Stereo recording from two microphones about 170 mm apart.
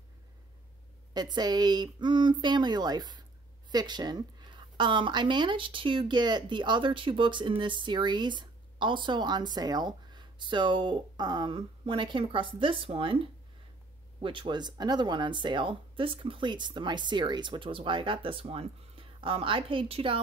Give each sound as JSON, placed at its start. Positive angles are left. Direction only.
{"t": 1.1, "sound": "a woman's voice", "side_deg": -25}